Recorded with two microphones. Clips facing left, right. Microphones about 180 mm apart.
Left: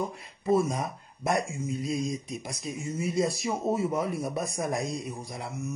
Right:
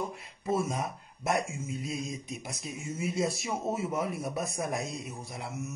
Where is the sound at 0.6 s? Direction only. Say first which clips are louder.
Left 4 dB; centre (ahead or behind).